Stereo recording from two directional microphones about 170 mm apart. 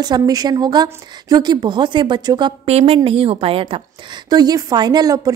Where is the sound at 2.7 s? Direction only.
40° right (ahead or behind).